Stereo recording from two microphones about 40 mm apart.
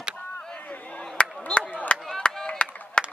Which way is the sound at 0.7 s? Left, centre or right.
Left.